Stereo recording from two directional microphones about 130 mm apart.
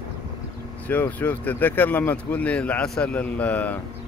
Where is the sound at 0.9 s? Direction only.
15° left (ahead or behind).